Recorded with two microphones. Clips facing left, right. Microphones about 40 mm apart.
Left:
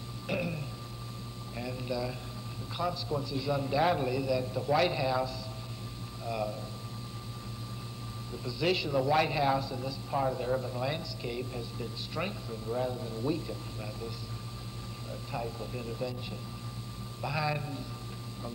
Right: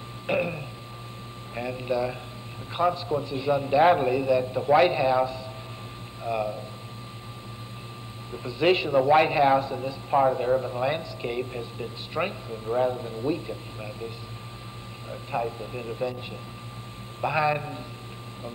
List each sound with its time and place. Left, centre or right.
0.3 s speech: right
8.5 s speech: right
15.0 s speech: right